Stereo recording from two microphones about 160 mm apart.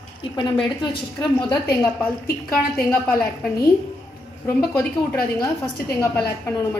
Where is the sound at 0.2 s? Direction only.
30° left (ahead or behind).